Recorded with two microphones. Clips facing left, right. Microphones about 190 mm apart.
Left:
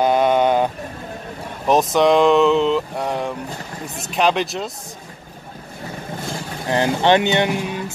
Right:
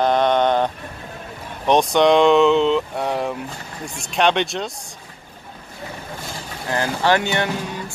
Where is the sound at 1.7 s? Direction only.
Centre (ahead or behind).